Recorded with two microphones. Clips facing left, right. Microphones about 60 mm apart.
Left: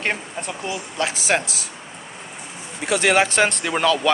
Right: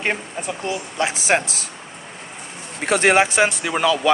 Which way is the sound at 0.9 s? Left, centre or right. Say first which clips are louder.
Right 2 dB; right.